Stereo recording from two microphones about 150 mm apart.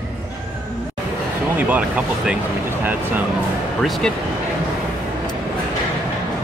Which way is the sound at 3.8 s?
Centre (ahead or behind).